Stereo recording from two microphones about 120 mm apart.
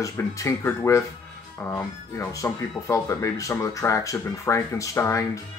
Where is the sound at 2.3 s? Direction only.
25° left (ahead or behind).